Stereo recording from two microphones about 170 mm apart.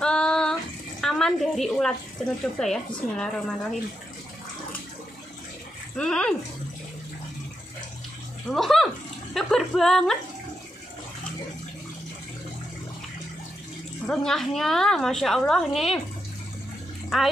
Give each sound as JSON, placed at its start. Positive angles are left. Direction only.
{"t": 0.0, "sound": "a sound", "side_deg": 5}
{"t": 1.0, "sound": "a woman's voice", "side_deg": 0}
{"t": 5.9, "sound": "a woman's voice", "side_deg": 5}
{"t": 8.5, "sound": "speech", "side_deg": 0}
{"t": 14.0, "sound": "a woman's voice", "side_deg": 5}